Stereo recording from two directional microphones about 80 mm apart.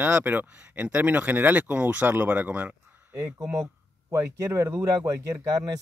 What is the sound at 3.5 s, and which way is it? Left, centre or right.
Speech, right.